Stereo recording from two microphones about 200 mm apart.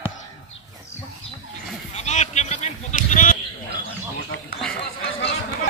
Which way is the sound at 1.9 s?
35° left (ahead or behind).